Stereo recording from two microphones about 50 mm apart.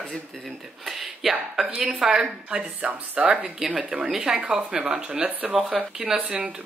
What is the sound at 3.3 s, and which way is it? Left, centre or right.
Speech, centre.